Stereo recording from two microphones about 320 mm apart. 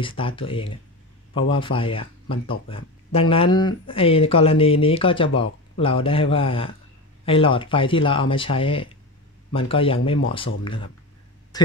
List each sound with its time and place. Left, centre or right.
0.0 s speech: centre